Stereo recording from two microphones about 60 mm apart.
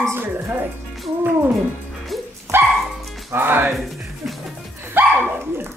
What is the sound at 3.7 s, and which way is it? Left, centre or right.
Music, centre.